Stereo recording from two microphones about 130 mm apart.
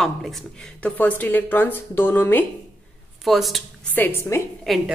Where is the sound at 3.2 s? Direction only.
Centre (ahead or behind).